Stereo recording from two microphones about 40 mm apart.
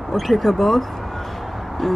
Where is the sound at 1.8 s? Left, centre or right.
Centre.